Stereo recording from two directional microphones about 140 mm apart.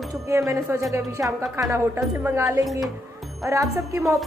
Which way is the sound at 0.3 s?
20° right (ahead or behind).